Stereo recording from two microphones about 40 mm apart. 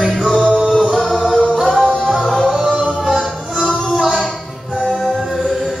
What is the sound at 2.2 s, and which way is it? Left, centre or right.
Music, centre.